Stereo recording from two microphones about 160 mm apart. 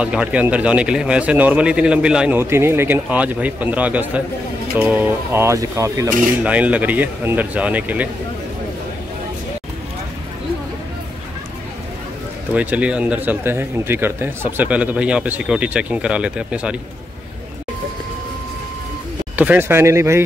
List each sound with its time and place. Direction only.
0.0 s a man's voice: 5° right (ahead or behind)
6.4 s a man's voice: 10° right (ahead or behind)
12.5 s a man's voice: 10° right (ahead or behind)
19.3 s a man's voice: 10° right (ahead or behind)